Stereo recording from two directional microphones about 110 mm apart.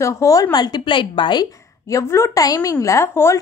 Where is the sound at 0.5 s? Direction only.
40° left (ahead or behind); by 3.4 s 25° left (ahead or behind).